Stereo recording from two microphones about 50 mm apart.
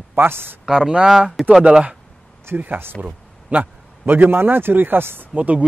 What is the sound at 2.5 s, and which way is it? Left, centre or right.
Speech, right.